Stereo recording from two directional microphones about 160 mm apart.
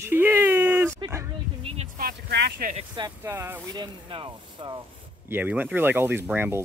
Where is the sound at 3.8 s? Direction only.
30° right (ahead or behind).